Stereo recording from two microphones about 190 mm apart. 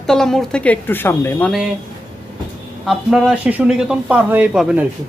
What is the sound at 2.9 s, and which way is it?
Speech, centre (ahead or behind).